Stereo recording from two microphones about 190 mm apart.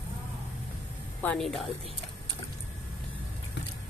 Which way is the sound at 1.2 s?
5° left (ahead or behind).